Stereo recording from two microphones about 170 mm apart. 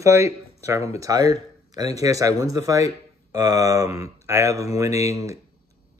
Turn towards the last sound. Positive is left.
turn(degrees=-20)  # may be behind; listen again after turning